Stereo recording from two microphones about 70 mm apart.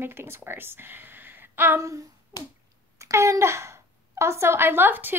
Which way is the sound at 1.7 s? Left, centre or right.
Right.